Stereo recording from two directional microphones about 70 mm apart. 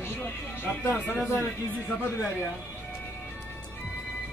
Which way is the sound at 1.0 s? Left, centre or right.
Left.